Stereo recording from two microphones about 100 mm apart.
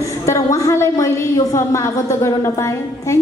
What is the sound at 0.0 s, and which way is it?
A woman's voice, 30° left (ahead or behind).